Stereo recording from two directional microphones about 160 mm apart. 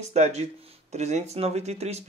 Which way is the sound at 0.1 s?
45° right (ahead or behind).